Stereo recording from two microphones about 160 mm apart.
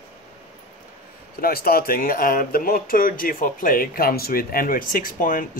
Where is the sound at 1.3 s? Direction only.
70° left (ahead or behind).